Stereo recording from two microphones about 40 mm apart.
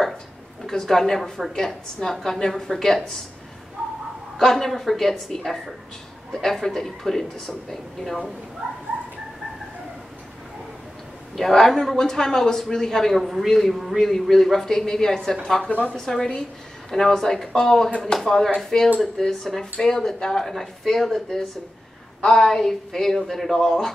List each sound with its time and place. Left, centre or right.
0.7 s speech: centre
4.4 s speech: centre
8.6 s dog: centre
11.3 s a woman's voice: centre